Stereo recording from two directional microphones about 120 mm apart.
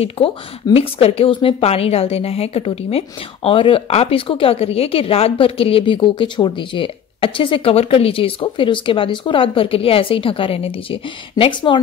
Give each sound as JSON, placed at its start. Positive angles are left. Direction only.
{"t": 0.2, "sound": "a woman's voice", "side_deg": 50}